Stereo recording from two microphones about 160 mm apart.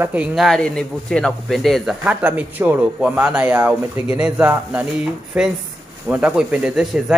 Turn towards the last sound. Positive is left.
turn(degrees=-5)  # may be behind; listen again after turning